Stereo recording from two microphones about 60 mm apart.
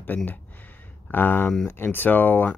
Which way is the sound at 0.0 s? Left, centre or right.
Left.